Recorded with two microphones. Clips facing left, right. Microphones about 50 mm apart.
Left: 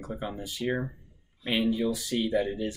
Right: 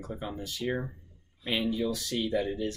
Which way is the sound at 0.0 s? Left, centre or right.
Centre.